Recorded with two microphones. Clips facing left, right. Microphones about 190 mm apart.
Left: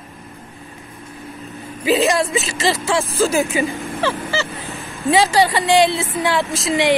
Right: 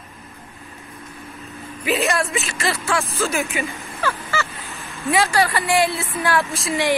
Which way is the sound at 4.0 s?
30° left (ahead or behind).